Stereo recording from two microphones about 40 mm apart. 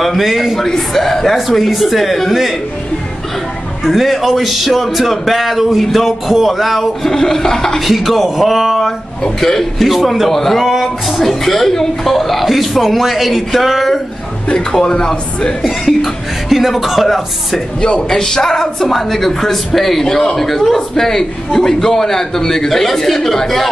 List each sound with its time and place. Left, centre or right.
0.0 s a man's voice: centre
0.6 s a man's voice: centre
3.8 s a man's voice: centre
7.1 s a man's voice: centre
7.8 s a man's voice: centre
9.2 s a man's voice: centre
9.8 s a man's voice: centre
14.7 s a man's voice: centre
15.6 s a man's voice: centre
18.1 s a man's voice: centre